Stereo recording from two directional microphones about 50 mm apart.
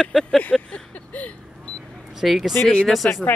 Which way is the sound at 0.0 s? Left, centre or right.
Centre.